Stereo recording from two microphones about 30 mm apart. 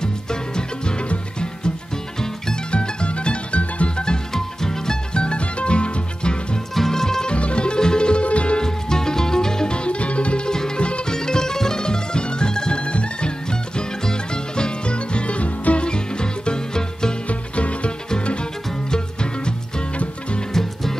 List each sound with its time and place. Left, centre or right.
0.0 s music: left
2.7 s music: left
4.3 s music: centre
5.1 s music: left
6.7 s music: centre
7.2 s music: left
8.5 s music: left
9.8 s music: left
11.1 s music: left
15.8 s music: left
17.3 s music: left
18.9 s music: left
20.5 s music: centre